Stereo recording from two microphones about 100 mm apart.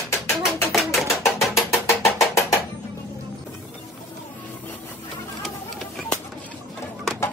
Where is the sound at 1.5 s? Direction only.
30° left (ahead or behind).